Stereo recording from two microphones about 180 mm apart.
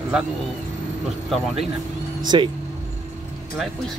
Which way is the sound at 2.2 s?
25° right (ahead or behind).